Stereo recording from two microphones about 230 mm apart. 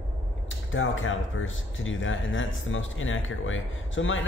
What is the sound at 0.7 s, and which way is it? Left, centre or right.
Speech, left.